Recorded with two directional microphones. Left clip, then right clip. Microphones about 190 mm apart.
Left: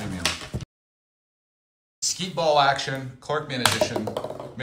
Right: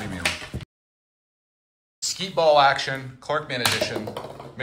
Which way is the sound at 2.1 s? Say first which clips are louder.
Right 3 dB; 15° left (ahead or behind).